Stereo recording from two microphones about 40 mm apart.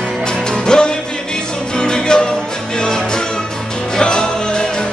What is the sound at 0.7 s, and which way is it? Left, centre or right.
Music, centre.